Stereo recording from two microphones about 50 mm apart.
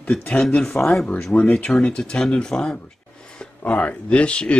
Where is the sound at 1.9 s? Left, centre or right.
Centre.